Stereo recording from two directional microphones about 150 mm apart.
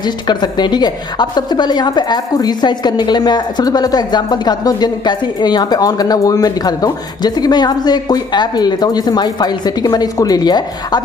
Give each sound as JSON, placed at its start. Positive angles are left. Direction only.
{"t": 0.0, "sound": "a woman's voice", "side_deg": 30}